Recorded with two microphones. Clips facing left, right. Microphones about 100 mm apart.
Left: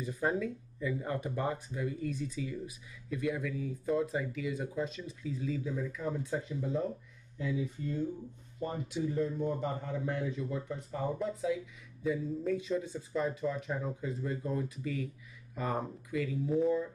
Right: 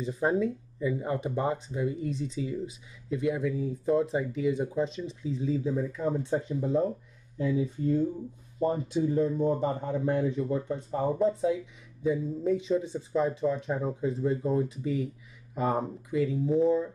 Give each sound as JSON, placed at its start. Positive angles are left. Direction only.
{"t": 0.0, "sound": "a man's voice", "side_deg": -25}